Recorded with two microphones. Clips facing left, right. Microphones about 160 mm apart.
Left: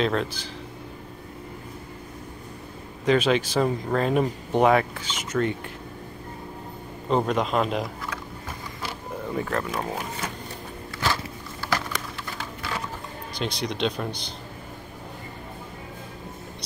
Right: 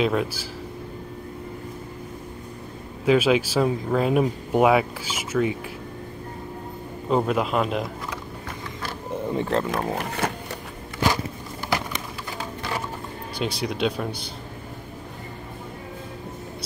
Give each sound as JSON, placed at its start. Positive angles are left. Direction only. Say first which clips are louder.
{"t": 0.0, "sound": "speech", "louder": "right 2 dB", "side_deg": -10}
{"t": 3.1, "sound": "speech", "louder": "right 2 dB", "side_deg": -5}
{"t": 7.1, "sound": "speech", "louder": "right 1 dB", "side_deg": -5}
{"t": 9.3, "sound": "speech", "louder": "right 3 dB", "side_deg": -25}
{"t": 9.9, "sound": "speech", "louder": "right 5 dB", "side_deg": -65}
{"t": 11.6, "sound": "a sound", "louder": "right 1 dB", "side_deg": -20}
{"t": 12.4, "sound": "sewing machine", "louder": "right 4 dB", "side_deg": -20}
{"t": 13.4, "sound": "speech", "louder": "right 2 dB", "side_deg": -5}